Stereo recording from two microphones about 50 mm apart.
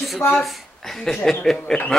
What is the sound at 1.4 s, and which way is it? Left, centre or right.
Speech, centre.